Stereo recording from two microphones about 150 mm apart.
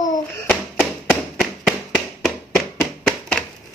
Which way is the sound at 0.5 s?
5° left (ahead or behind).